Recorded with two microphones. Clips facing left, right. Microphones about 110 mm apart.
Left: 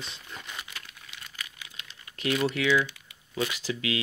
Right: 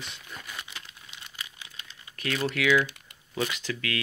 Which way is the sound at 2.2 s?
20° left (ahead or behind).